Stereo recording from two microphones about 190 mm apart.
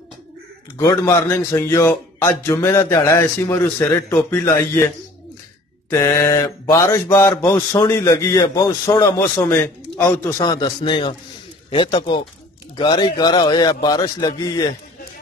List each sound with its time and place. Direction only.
0.7 s mantra: 15° left (ahead or behind)
11.7 s a man's voice: 25° left (ahead or behind)